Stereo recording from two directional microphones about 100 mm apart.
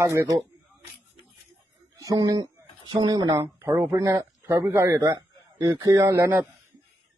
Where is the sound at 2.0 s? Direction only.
35° right (ahead or behind).